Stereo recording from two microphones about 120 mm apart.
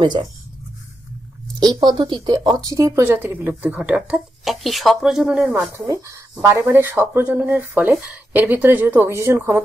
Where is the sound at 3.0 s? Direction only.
20° right (ahead or behind).